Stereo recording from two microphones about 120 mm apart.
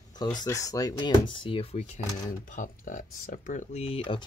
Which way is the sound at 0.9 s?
45° left (ahead or behind).